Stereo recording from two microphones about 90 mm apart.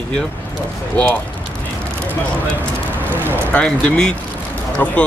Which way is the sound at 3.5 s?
15° left (ahead or behind).